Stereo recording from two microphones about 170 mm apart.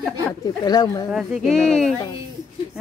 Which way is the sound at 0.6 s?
25° left (ahead or behind).